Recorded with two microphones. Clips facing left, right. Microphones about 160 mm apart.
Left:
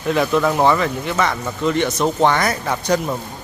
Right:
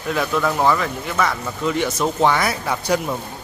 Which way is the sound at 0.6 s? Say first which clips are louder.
Left 3 dB; centre (ahead or behind).